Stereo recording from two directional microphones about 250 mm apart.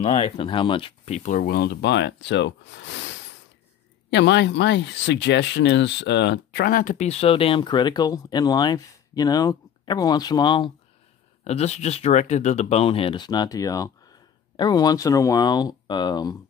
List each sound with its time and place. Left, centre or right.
0.0 s speech: left